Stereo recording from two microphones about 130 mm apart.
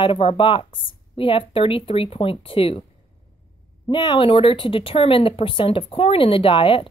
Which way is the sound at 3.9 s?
40° left (ahead or behind).